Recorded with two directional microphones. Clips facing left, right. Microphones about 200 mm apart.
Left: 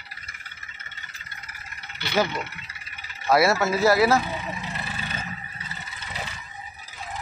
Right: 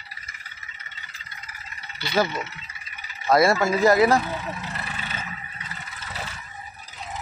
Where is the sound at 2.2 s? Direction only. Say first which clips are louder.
Right 1 dB; 60° left (ahead or behind).